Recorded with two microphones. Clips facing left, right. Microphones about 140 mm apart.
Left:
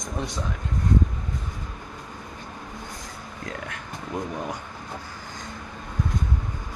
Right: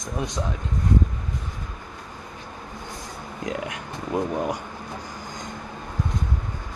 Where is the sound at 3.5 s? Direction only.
15° right (ahead or behind).